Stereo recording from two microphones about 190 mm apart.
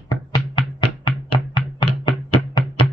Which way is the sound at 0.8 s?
25° left (ahead or behind).